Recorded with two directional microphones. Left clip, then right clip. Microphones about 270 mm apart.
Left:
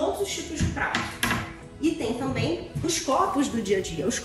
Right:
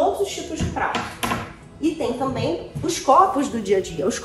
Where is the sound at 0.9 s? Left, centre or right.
Left.